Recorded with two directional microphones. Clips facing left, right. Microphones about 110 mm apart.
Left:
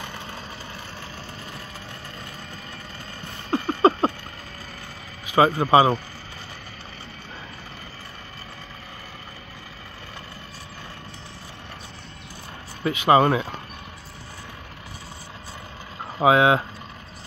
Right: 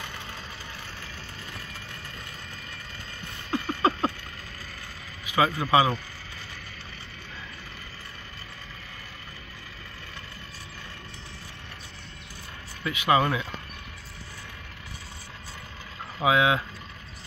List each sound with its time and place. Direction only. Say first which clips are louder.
3.4 s a sound: left 6 dB; 30° left (ahead or behind)
5.2 s speech: left 6 dB; 35° left (ahead or behind)
12.8 s speech: left 6 dB; 35° left (ahead or behind)
16.2 s speech: left 5 dB; 40° left (ahead or behind)